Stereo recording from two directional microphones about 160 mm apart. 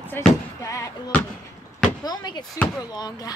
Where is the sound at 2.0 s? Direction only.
25° left (ahead or behind).